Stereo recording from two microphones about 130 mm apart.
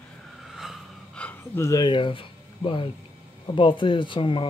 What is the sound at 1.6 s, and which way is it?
Speech, 25° left (ahead or behind).